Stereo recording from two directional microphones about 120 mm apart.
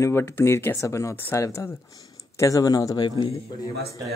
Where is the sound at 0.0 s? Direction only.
20° left (ahead or behind).